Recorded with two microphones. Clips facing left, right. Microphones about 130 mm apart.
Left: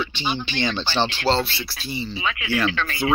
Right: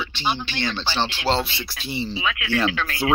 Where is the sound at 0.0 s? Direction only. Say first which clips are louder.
Even; 5° right (ahead or behind); by 2.0 s 20° right (ahead or behind).